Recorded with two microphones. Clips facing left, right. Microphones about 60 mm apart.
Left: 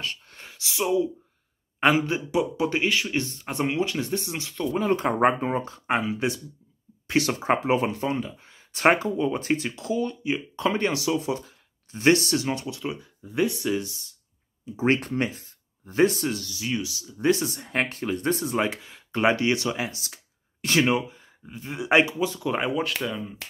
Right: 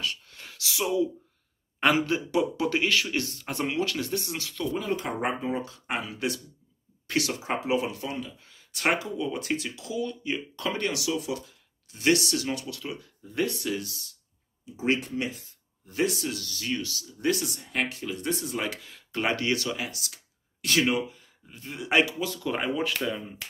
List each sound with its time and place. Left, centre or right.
0.0 s a sound: left
0.5 s speech: centre
4.8 s speech: left
10.2 s speech: centre
15.0 s speech: left
16.4 s speech: centre
17.2 s speech: left
17.6 s speech: left; by 22.5 s centre
22.5 s speech: centre